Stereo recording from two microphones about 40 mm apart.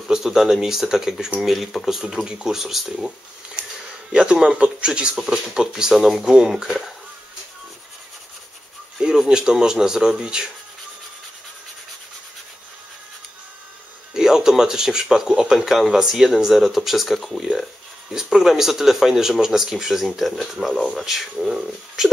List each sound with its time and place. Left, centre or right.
0.1 s speech: centre
2.2 s speech: right
2.5 s speech: centre
3.6 s a sound: right
4.1 s speech: right
9.0 s speech: centre
14.1 s speech: centre
15.5 s speech: centre
18.1 s speech: centre